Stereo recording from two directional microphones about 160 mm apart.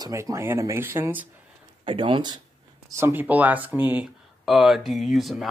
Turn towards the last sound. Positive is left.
turn(degrees=0)  # may be behind; listen again after turning